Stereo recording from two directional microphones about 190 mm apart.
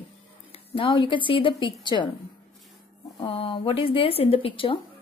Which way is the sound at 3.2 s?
30° left (ahead or behind).